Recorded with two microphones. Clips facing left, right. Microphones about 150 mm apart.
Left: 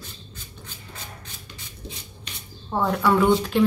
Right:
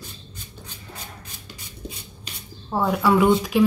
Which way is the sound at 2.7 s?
10° right (ahead or behind).